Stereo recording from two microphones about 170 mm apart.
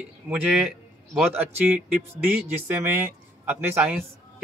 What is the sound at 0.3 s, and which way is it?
A man's voice, 5° right (ahead or behind).